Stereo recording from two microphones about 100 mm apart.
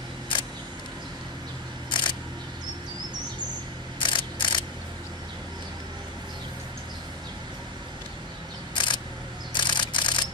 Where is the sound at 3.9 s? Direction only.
55° left (ahead or behind).